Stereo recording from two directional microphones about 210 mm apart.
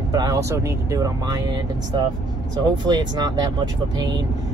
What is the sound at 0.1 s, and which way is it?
Speech, 15° right (ahead or behind).